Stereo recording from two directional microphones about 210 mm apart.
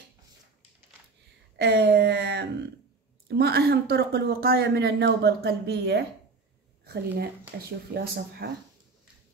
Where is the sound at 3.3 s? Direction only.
50° right (ahead or behind).